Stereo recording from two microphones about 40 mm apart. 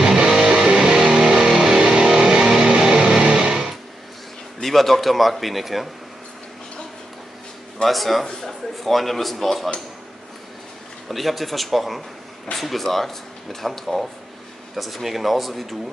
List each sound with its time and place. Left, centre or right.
0.0 s music: centre
4.6 s speech: centre
7.8 s speech: centre
11.1 s speech: centre